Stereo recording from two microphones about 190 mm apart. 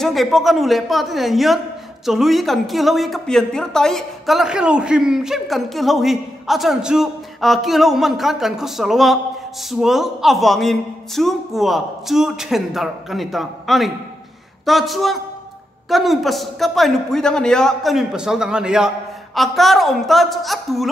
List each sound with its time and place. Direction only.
0.0 s speech: centre (ahead or behind)